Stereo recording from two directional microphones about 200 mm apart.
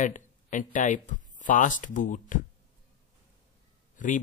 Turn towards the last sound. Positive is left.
turn(degrees=40)  # may be behind; listen again after turning